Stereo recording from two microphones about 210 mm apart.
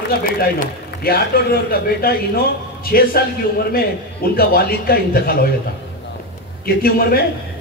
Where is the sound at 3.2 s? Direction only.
50° left (ahead or behind).